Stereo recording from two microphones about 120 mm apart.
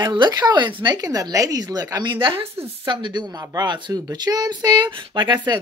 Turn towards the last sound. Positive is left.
turn(degrees=-35)  # may be behind; listen again after turning